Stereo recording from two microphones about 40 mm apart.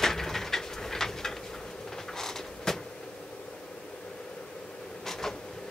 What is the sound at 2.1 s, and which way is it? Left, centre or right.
Creak, centre.